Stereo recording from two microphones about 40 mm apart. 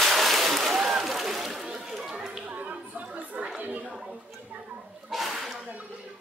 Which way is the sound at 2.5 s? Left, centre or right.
Right.